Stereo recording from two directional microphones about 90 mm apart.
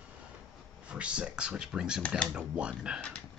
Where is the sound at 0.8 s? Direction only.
15° right (ahead or behind).